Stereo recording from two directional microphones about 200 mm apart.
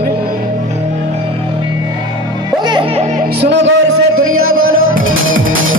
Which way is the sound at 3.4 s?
60° right (ahead or behind).